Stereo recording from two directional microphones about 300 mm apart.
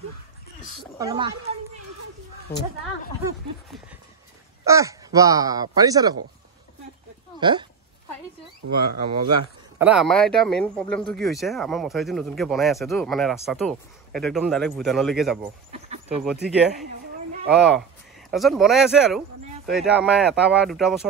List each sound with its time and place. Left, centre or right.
0.9 s a child's voice: centre
2.5 s a woman's voice: left
4.6 s speech: centre
7.3 s speech: centre
8.6 s speech: right
9.8 s speech: centre
15.7 s a sound: right
16.2 s speech: centre